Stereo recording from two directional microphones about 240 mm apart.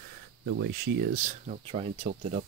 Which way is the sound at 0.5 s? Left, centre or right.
Right.